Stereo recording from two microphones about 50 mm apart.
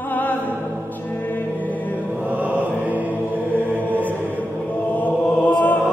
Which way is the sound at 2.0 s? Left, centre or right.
Right.